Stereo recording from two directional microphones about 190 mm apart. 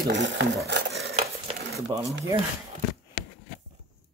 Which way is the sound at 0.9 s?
35° right (ahead or behind).